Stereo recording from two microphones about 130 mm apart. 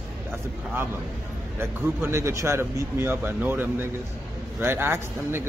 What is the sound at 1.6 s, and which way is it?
Speech, 20° right (ahead or behind).